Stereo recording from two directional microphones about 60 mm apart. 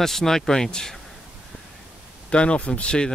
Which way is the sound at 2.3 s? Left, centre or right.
Centre.